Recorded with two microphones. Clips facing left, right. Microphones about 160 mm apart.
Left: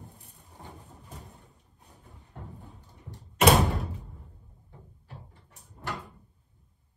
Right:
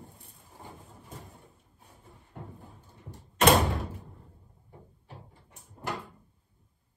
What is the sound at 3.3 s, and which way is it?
Door, 5° left (ahead or behind).